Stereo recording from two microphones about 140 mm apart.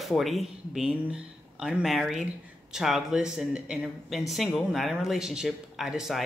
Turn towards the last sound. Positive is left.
turn(degrees=-5)  # may be behind; listen again after turning